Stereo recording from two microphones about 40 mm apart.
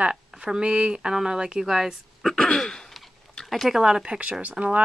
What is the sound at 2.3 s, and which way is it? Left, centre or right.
Throat clearing, centre.